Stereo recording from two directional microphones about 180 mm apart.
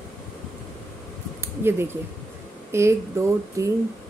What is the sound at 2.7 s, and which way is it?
Speech, 15° right (ahead or behind).